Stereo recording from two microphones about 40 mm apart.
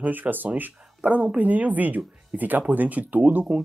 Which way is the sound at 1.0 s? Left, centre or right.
Right.